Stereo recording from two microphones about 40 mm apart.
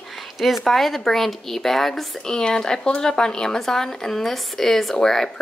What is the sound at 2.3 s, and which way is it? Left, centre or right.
Speech, centre.